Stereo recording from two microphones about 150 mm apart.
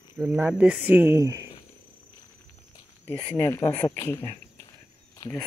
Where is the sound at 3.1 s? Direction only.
10° left (ahead or behind).